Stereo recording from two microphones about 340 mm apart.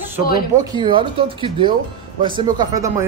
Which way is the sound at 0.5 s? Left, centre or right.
Centre.